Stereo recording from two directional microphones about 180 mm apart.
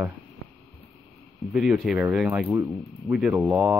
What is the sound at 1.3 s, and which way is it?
Speech, centre (ahead or behind).